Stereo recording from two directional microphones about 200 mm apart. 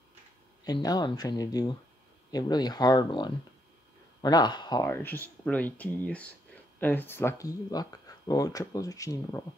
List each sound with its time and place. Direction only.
0.7 s speech: 20° left (ahead or behind)